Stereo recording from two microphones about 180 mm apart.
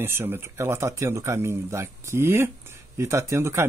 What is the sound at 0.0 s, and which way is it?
Speech, 10° right (ahead or behind).